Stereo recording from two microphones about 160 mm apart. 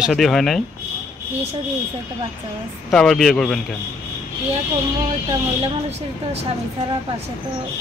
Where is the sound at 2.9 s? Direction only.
Centre (ahead or behind).